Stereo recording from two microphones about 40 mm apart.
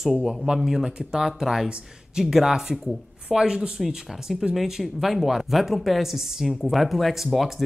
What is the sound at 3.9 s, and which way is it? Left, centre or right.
Speech, centre.